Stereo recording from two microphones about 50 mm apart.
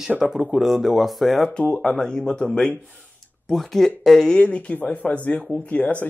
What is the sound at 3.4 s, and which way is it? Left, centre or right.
Speech, centre.